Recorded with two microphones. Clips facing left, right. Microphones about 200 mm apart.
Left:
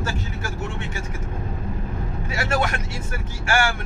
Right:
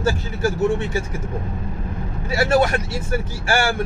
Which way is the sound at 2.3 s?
35° right (ahead or behind).